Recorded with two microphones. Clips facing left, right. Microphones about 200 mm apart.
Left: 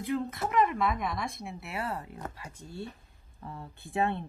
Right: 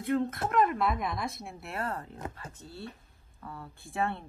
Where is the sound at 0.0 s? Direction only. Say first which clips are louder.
Right 2 dB; centre (ahead or behind).